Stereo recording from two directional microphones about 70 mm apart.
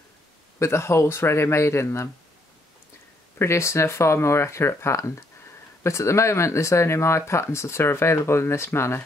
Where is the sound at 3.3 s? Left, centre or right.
Left.